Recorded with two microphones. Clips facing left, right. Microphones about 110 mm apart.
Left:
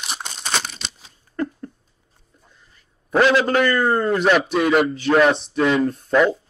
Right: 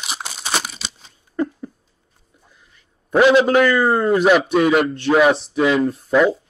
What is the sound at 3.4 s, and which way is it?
A man's voice, 5° right (ahead or behind).